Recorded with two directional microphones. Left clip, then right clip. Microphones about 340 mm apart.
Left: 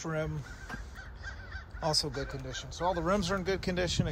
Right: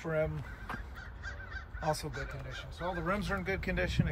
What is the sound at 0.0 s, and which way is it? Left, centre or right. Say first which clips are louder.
Speech: right 2 dB; centre.